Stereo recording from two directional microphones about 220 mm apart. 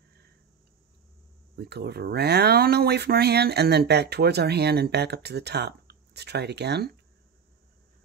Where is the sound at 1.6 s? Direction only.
45° right (ahead or behind).